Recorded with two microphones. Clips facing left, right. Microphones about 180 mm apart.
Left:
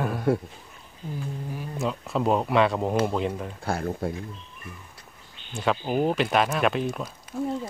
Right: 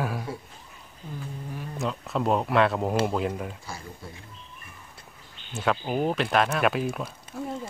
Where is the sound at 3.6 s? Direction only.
60° left (ahead or behind).